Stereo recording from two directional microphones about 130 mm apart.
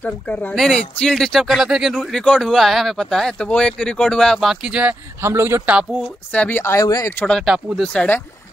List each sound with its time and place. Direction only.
0.0 s speech: 15° left (ahead or behind); by 4.9 s 10° right (ahead or behind)
5.2 s a man's voice: 20° right (ahead or behind)
6.3 s speech: 15° left (ahead or behind)
7.2 s speech: centre (ahead or behind)